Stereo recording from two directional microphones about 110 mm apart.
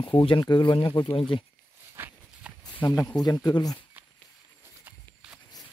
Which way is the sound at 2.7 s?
35° left (ahead or behind).